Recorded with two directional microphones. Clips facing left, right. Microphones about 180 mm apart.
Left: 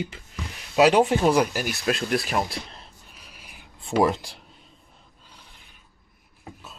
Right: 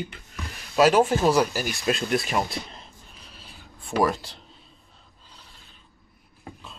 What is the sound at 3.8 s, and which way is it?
Speech, 25° left (ahead or behind).